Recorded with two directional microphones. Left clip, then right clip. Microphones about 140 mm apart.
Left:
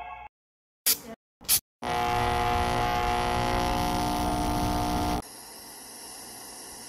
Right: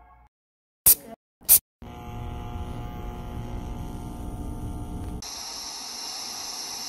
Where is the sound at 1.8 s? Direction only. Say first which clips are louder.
Left 16 dB; 35° left (ahead or behind).